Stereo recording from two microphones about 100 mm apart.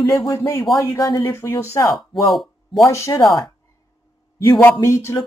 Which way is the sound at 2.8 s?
30° left (ahead or behind).